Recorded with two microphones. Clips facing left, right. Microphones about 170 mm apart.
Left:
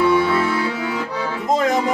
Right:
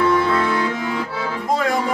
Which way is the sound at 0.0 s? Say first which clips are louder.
Left 1 dB; 5° left (ahead or behind).